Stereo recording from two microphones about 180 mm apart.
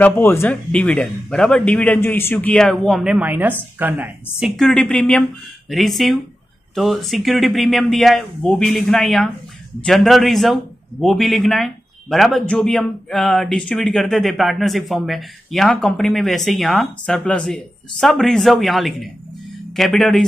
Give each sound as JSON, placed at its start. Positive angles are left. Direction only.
{"t": 0.0, "sound": "a man's voice", "side_deg": 10}
{"t": 4.6, "sound": "a man's voice", "side_deg": 5}